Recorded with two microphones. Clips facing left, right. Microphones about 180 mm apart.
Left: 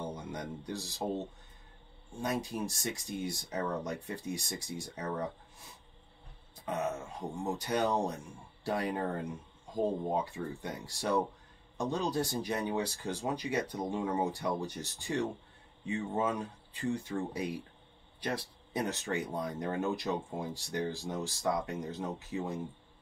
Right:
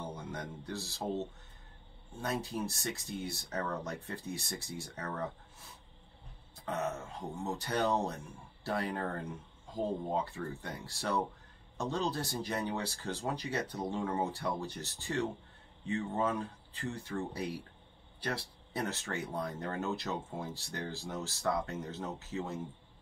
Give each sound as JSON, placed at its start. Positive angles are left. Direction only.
{"t": 0.0, "sound": "speech", "side_deg": 15}
{"t": 2.2, "sound": "speech", "side_deg": 15}
{"t": 6.6, "sound": "speech", "side_deg": 15}